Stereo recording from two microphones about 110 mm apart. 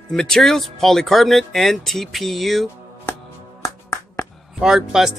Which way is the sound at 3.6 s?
25° left (ahead or behind).